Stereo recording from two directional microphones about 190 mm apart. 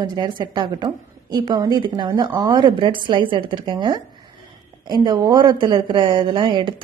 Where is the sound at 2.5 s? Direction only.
25° right (ahead or behind).